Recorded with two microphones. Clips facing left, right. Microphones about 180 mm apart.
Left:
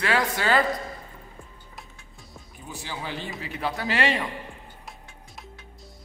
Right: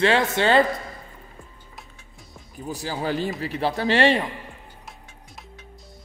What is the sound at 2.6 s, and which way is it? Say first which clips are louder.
A man's voice: right 8 dB; 40° right (ahead or behind).